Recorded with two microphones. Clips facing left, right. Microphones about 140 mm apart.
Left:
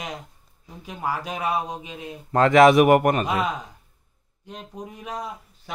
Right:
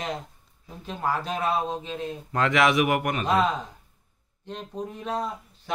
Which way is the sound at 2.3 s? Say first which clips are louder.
Left 8 dB; 40° left (ahead or behind).